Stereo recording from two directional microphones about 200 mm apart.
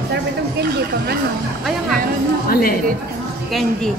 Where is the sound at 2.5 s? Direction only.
50° left (ahead or behind).